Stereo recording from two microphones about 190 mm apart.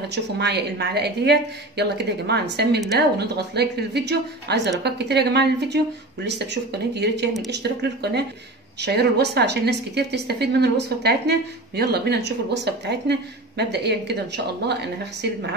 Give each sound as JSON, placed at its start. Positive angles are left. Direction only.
{"t": 0.1, "sound": "a woman's voice", "side_deg": -60}